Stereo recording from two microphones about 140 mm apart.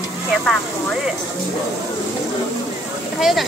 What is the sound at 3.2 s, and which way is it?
Speech, centre (ahead or behind).